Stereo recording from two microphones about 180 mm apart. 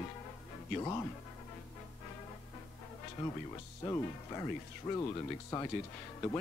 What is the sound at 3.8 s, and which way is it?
Speech, 20° left (ahead or behind).